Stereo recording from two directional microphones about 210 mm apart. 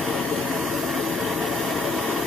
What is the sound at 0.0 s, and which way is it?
Vehicle, centre (ahead or behind).